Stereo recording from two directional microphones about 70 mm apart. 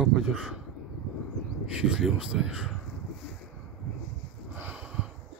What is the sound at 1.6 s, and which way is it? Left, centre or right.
Speech, centre.